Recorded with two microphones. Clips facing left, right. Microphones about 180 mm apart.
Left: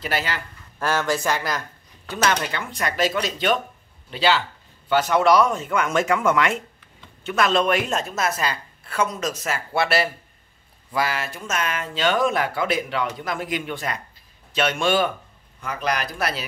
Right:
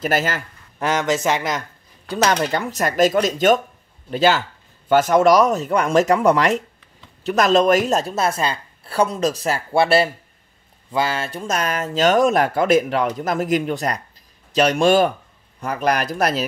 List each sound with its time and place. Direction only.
0.0 s speech: 45° right (ahead or behind)
0.7 s speech: 20° right (ahead or behind)
2.0 s speech: 40° right (ahead or behind)